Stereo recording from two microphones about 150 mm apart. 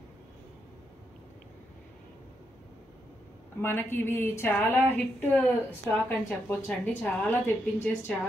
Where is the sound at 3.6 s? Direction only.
15° left (ahead or behind).